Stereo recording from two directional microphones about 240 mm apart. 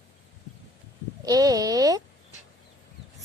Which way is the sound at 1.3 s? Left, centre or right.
Centre.